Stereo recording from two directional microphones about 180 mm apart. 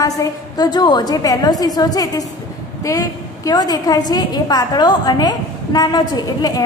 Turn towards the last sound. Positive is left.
turn(degrees=20)  # may be behind; listen again after turning